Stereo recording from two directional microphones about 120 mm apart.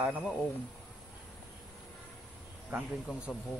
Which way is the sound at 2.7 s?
5° right (ahead or behind).